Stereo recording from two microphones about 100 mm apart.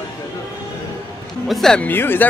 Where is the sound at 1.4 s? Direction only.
Centre (ahead or behind).